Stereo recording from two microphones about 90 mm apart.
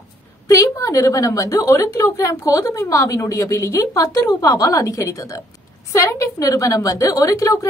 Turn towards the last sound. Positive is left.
turn(degrees=35)  # may be behind; listen again after turning